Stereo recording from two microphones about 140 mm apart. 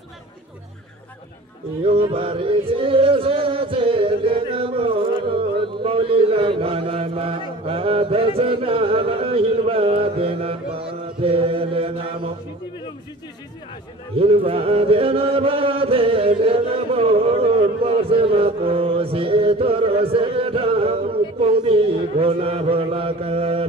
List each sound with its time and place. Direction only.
1.8 s speech: 40° right (ahead or behind)
10.8 s chant: 40° right (ahead or behind)
14.1 s chant: 40° right (ahead or behind)